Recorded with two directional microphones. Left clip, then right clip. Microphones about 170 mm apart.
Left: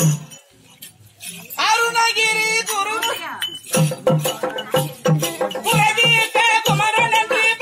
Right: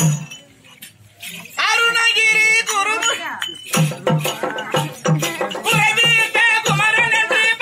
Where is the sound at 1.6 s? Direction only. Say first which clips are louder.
Right 1 dB; centre (ahead or behind).